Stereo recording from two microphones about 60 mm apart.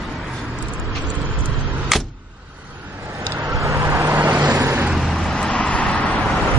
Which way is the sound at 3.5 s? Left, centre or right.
Right.